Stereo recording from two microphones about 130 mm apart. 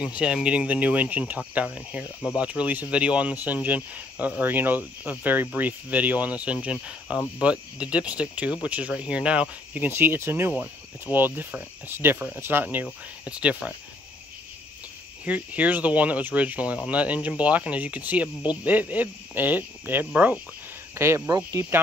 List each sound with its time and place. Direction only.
0.0 s speech: 5° right (ahead or behind)
15.2 s speech: 10° right (ahead or behind)